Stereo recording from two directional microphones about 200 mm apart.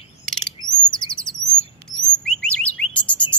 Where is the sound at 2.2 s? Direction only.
5° left (ahead or behind).